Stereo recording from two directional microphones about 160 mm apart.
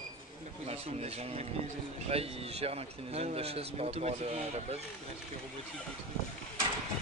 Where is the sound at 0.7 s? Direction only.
40° right (ahead or behind).